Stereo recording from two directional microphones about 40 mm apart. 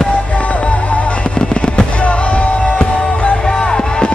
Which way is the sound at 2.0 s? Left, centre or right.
Left.